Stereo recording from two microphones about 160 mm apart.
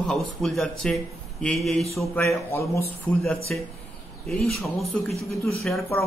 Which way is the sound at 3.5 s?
5° left (ahead or behind).